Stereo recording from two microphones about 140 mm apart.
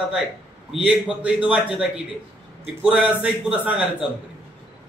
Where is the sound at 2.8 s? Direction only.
10° right (ahead or behind).